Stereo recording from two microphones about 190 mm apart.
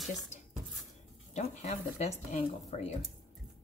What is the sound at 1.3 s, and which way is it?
Speech, 35° left (ahead or behind).